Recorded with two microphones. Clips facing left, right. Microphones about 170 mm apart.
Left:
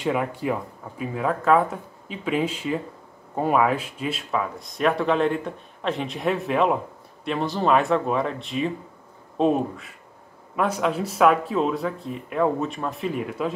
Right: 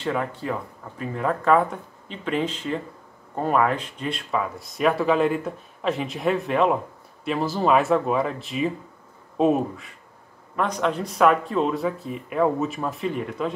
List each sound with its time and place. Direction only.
0.0 s speech: 10° left (ahead or behind)